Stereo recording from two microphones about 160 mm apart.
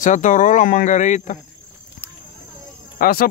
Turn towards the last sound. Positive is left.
turn(degrees=70)  # may be behind; listen again after turning